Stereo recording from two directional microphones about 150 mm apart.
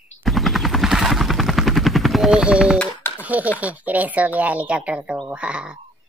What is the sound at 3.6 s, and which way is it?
Speech, 10° right (ahead or behind).